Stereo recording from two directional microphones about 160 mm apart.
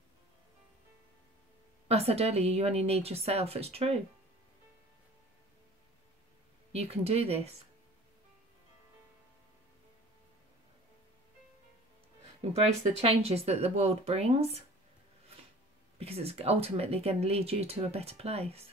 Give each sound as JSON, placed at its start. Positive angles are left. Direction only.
{"t": 1.9, "sound": "speech", "side_deg": -40}
{"t": 6.7, "sound": "speech", "side_deg": -40}
{"t": 12.5, "sound": "speech", "side_deg": -40}
{"t": 16.0, "sound": "speech", "side_deg": -40}